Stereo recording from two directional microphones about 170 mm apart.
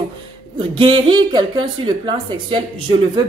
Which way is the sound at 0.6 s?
30° right (ahead or behind).